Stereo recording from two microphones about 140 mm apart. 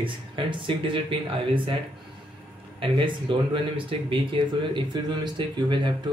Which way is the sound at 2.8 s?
35° right (ahead or behind).